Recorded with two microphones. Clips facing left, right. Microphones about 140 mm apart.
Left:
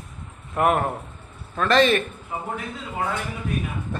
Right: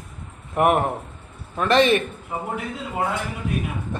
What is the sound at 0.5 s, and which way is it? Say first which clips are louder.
A man's voice: right 2 dB; 20° right (ahead or behind).